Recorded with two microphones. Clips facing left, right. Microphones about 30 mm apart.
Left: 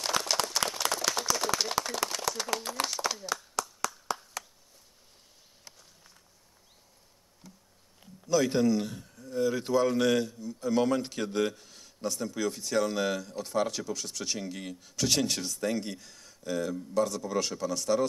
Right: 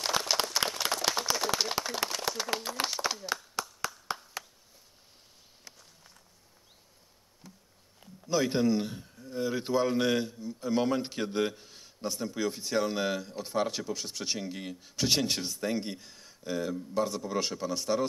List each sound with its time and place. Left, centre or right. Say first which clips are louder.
0.0 s a sound: even; centre
2.8 s speech: even; centre
3.6 s clapping: left 2 dB; right
4.1 s a sound: left 2 dB; right
5.7 s walk: right 1 dB; centre
8.3 s a man's voice: left 2 dB; right
14.8 s a man's voice: even; right